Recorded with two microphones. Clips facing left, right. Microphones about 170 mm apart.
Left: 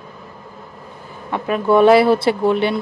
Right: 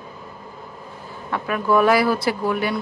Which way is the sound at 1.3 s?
25° left (ahead or behind).